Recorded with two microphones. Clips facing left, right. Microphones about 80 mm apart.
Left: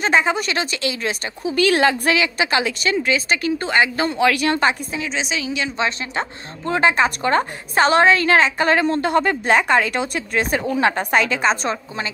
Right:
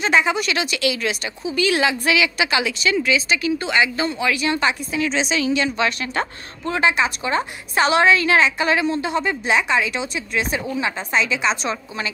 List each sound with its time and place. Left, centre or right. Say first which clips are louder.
0.0 s speech: left 1 dB; left
1.4 s speech: left 3 dB; left
5.0 s a woman's voice: right 5 dB; centre
5.8 s speech: right 1 dB; left